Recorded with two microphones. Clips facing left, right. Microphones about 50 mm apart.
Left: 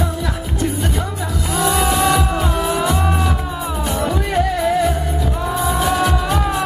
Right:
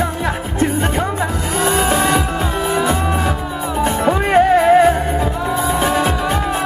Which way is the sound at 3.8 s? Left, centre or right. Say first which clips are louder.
Right 6 dB; right.